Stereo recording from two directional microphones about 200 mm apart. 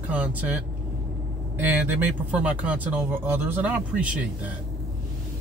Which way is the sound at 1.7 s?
10° right (ahead or behind).